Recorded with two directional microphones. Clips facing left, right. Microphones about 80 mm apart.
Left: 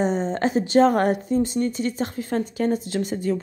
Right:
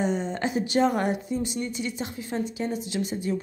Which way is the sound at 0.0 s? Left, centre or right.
Left.